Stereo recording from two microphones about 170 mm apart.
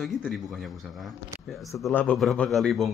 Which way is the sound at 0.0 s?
Centre (ahead or behind).